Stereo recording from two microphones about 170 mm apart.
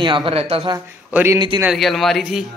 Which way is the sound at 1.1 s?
10° right (ahead or behind).